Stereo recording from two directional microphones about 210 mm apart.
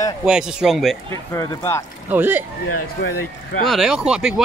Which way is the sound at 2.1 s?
10° right (ahead or behind).